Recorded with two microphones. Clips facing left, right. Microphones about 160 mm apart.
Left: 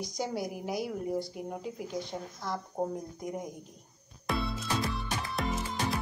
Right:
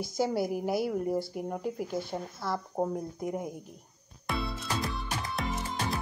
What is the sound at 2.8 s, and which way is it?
Speech, 30° right (ahead or behind).